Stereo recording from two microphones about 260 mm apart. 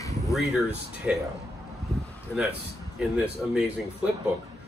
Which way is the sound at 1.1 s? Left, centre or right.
Centre.